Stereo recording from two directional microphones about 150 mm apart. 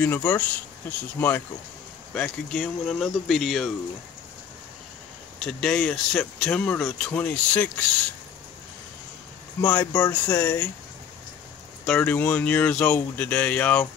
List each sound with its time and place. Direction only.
0.0 s speech: 10° left (ahead or behind)
2.1 s speech: 5° left (ahead or behind)
5.4 s speech: 5° left (ahead or behind)
9.6 s speech: 15° left (ahead or behind)
11.8 s speech: 5° left (ahead or behind)